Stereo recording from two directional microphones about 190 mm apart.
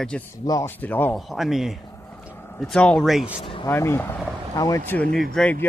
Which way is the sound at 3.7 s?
10° left (ahead or behind).